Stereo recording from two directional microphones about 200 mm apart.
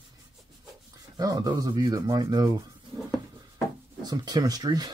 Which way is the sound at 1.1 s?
20° right (ahead or behind).